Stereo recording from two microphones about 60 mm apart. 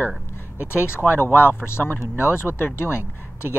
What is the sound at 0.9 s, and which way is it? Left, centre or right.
Speech, left.